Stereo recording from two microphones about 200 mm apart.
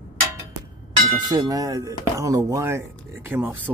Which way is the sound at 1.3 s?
20° right (ahead or behind).